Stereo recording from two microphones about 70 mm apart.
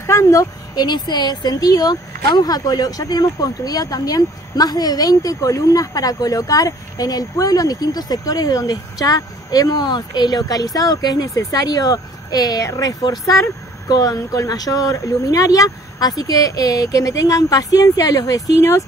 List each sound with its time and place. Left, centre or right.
0.0 s a woman's voice: left
0.7 s speech: left
11.3 s speech: left
12.6 s speech: left